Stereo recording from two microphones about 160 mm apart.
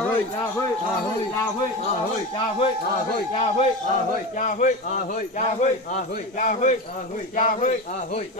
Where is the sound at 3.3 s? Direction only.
40° left (ahead or behind).